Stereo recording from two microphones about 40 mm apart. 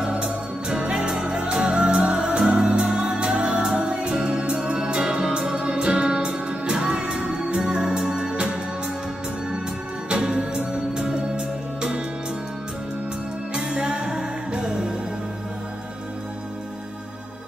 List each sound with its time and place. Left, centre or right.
0.1 s music: right
10.0 s music: right
13.6 s music: right